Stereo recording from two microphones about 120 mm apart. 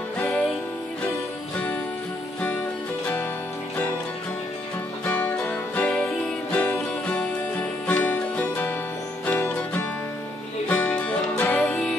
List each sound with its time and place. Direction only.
5.0 s music: 10° left (ahead or behind)